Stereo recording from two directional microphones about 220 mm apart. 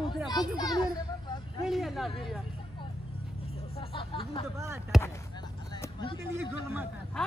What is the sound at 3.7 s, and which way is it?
Music, 25° left (ahead or behind).